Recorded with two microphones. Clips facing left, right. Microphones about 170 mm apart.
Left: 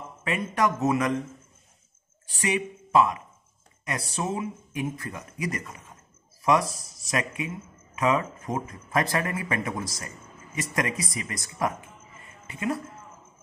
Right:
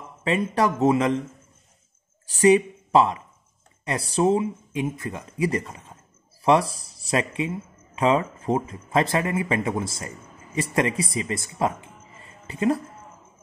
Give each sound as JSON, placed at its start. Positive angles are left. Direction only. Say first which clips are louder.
{"t": 0.2, "sound": "speech", "louder": "right 4 dB", "side_deg": -30}
{"t": 2.4, "sound": "speech", "louder": "right 11 dB", "side_deg": -35}